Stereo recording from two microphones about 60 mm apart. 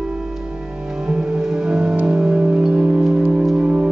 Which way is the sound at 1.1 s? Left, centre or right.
Centre.